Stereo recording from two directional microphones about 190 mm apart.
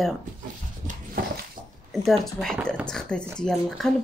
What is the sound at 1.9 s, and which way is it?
Speech, centre (ahead or behind).